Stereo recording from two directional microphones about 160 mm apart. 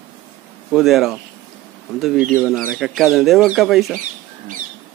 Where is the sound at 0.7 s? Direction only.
Centre (ahead or behind).